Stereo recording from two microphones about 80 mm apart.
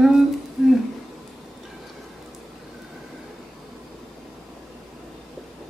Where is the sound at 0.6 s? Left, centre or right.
Centre.